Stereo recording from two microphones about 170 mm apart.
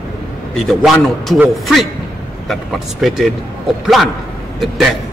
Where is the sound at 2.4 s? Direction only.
Centre (ahead or behind).